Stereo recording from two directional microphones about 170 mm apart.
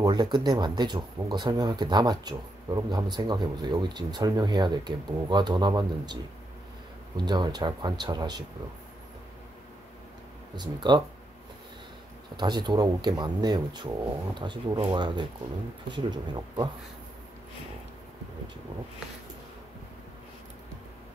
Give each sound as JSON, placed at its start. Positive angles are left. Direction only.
{"t": 0.0, "sound": "speech", "side_deg": -25}
{"t": 7.2, "sound": "speech", "side_deg": -25}
{"t": 10.5, "sound": "speech", "side_deg": -25}
{"t": 12.4, "sound": "speech", "side_deg": -25}